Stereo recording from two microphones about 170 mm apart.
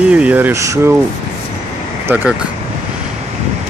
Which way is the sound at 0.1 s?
10° right (ahead or behind).